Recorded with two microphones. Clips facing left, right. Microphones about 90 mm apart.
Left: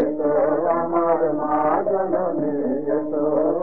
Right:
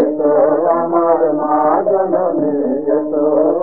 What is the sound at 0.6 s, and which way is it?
Music, 25° right (ahead or behind).